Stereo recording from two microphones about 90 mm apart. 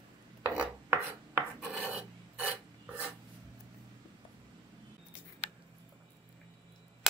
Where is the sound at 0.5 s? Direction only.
20° right (ahead or behind).